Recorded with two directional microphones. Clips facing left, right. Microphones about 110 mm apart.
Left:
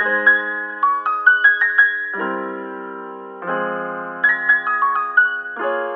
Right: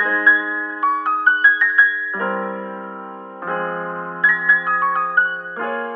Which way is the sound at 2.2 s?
15° right (ahead or behind).